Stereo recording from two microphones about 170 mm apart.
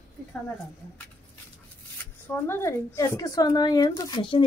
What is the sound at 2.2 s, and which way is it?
Speech, 15° left (ahead or behind).